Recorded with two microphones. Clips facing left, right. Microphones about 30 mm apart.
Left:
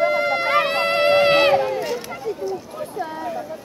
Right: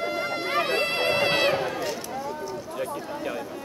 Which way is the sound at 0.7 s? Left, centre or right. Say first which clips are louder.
Left 7 dB; centre.